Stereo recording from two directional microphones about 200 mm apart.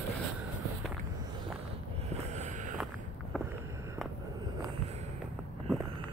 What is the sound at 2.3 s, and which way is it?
Vehicle, 35° right (ahead or behind).